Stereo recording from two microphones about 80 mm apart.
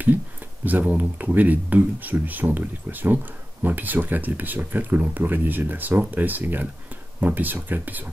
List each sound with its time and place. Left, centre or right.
0.7 s speech: right